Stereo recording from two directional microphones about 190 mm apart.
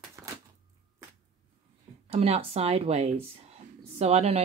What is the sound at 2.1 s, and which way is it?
Speech, 35° right (ahead or behind).